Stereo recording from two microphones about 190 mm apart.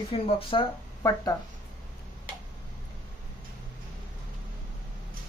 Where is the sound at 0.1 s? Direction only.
30° left (ahead or behind).